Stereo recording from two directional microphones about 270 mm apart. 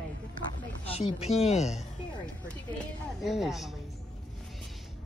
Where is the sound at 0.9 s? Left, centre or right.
Left.